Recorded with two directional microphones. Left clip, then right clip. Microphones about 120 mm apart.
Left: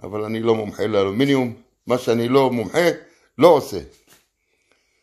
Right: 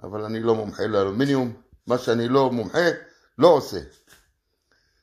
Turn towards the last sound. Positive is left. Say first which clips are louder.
# left 3 dB
turn(degrees=10)  # may be behind; listen again after turning